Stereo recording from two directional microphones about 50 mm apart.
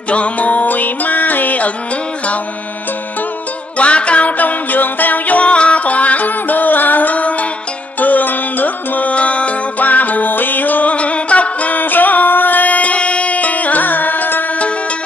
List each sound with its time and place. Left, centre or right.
0.1 s music: left
3.7 s music: left